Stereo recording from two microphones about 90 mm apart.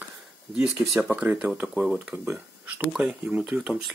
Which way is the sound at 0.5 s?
5° right (ahead or behind).